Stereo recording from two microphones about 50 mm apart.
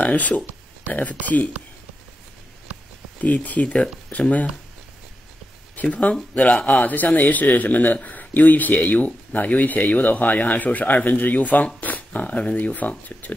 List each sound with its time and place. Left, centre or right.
0.0 s a man's voice: left
3.2 s speech: left
5.8 s a man's voice: left